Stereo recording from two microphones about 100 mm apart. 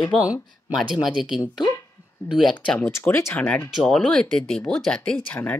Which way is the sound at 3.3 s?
15° left (ahead or behind).